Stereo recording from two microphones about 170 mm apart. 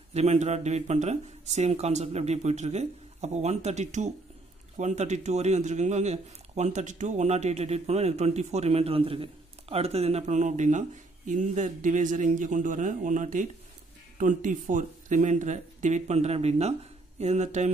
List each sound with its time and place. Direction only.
0.1 s a man's voice: 40° right (ahead or behind)